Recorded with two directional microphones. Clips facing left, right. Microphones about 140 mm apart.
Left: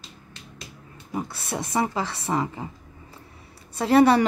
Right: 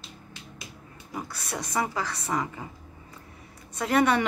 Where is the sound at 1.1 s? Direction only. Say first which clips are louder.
Left 5 dB; 25° left (ahead or behind).